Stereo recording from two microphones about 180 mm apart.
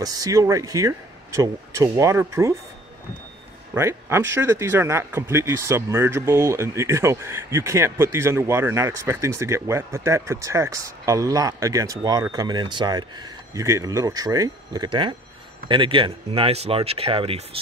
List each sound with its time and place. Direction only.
0.0 s speech: 20° right (ahead or behind)
3.7 s speech: 15° right (ahead or behind); by 17.5 s 30° right (ahead or behind)